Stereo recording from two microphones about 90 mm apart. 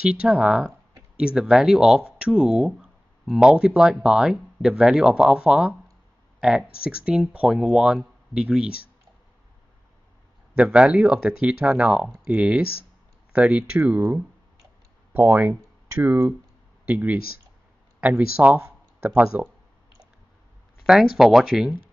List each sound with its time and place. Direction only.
0.0 s speech: 15° right (ahead or behind)
10.5 s speech: 10° right (ahead or behind)
20.8 s speech: 5° right (ahead or behind)